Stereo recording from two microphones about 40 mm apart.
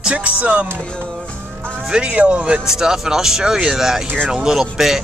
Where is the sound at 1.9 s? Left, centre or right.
Right.